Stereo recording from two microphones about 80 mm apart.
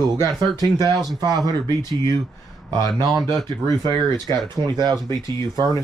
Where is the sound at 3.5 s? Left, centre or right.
Right.